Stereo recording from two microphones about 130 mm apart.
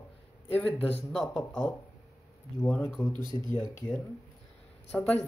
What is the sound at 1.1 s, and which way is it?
Speech, centre (ahead or behind).